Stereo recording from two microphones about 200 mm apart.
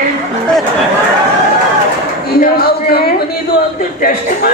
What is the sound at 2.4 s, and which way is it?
A woman's voice, 50° left (ahead or behind).